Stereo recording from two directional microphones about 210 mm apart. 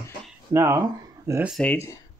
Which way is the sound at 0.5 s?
10° right (ahead or behind).